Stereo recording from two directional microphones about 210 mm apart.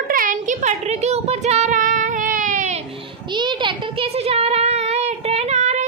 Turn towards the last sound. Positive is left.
turn(degrees=-35)  # may be behind; listen again after turning